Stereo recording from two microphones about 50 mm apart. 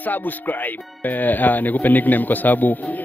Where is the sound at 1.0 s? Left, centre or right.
Left.